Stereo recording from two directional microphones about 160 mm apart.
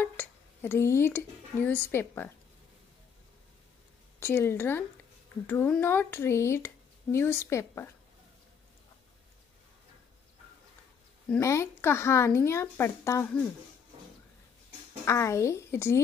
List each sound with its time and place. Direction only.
0.0 s speech: 15° left (ahead or behind)
4.2 s speech: 15° left (ahead or behind)
11.3 s speech: 20° left (ahead or behind)
15.0 s speech: 20° left (ahead or behind)